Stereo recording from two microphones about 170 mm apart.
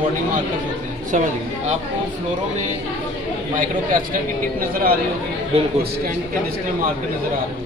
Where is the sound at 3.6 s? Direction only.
55° right (ahead or behind).